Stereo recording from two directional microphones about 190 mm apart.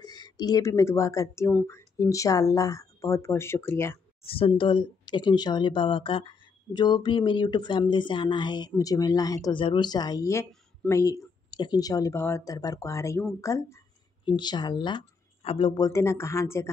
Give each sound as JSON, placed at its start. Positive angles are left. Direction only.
{"t": 0.0, "sound": "speech", "side_deg": 20}
{"t": 4.2, "sound": "speech", "side_deg": 30}
{"t": 15.9, "sound": "speech", "side_deg": 15}